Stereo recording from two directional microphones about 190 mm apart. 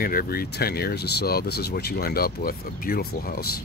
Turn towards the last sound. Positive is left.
turn(degrees=50)  # may be behind; listen again after turning